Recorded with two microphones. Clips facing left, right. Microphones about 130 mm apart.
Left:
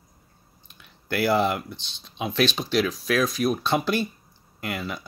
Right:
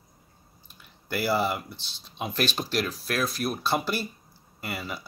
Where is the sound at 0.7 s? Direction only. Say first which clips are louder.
Left 5 dB; 10° right (ahead or behind).